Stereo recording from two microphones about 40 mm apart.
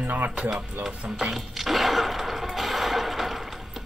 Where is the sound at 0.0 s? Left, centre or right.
Right.